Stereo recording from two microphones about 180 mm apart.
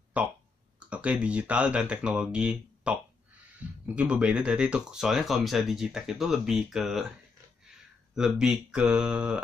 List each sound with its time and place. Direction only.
0.2 s speech: 10° right (ahead or behind)